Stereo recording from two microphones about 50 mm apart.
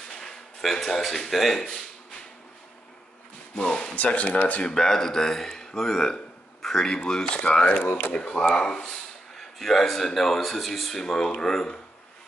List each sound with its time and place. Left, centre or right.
0.2 s a sound: centre
1.3 s speech: centre
3.5 s speech: centre
3.9 s speech: left
4.6 s speech: centre
9.4 s speech: centre